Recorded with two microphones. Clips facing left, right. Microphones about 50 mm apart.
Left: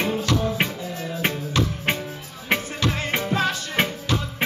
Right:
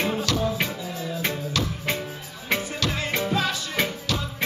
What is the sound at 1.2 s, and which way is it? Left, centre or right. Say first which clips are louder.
Music: left 4 dB; left.